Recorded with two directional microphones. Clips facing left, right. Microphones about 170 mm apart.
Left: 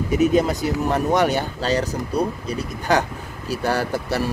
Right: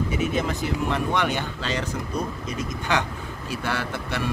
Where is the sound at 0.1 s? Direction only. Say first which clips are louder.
Left 8 dB; 40° left (ahead or behind).